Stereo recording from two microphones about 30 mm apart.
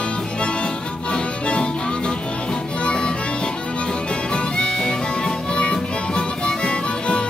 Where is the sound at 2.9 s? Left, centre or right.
Left.